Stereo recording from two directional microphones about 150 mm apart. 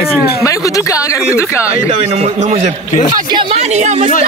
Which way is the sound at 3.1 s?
30° right (ahead or behind).